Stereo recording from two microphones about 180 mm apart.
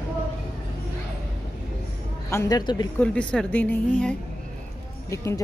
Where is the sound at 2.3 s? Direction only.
20° left (ahead or behind).